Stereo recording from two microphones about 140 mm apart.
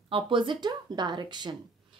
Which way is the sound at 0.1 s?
35° right (ahead or behind).